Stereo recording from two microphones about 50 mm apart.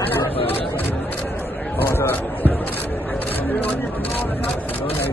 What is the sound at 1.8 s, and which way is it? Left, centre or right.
Speech, left.